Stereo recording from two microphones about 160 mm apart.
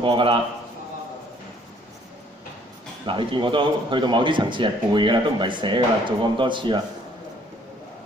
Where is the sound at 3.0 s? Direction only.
30° right (ahead or behind).